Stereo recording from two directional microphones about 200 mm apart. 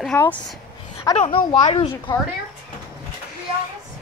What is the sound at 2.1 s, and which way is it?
Speech, 20° left (ahead or behind).